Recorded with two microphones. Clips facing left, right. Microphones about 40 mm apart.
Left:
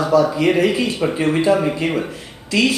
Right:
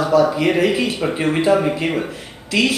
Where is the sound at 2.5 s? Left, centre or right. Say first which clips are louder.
Left 1 dB; right.